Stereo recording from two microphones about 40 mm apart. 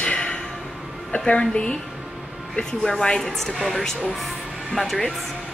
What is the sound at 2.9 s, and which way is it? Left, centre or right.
Speech, centre.